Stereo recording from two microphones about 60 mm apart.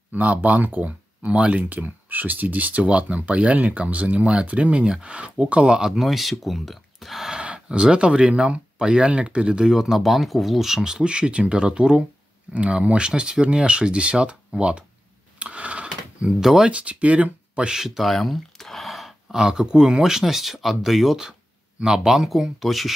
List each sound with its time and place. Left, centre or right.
0.1 s speech: right
5.9 s speech: centre
7.3 s speech: centre
15.3 s a sound: right
16.4 s speech: centre
16.7 s speech: right; by 19.1 s centre
19.3 s speech: centre